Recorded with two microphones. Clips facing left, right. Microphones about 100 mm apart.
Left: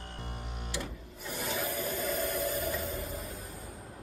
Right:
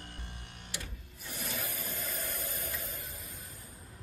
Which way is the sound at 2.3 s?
90° left.